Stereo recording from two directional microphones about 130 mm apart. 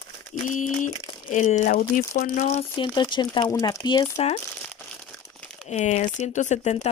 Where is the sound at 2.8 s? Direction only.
35° left (ahead or behind).